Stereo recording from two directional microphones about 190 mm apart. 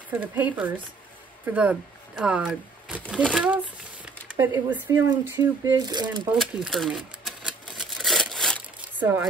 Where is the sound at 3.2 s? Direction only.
5° left (ahead or behind).